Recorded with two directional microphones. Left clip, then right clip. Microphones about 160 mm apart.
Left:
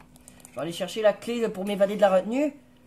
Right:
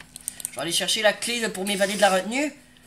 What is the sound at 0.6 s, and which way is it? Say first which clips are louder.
Speech: right 5 dB; 50° left (ahead or behind).